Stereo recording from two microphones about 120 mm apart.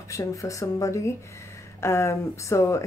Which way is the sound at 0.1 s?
25° left (ahead or behind).